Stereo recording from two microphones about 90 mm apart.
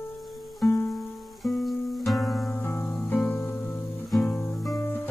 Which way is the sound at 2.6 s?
20° left (ahead or behind).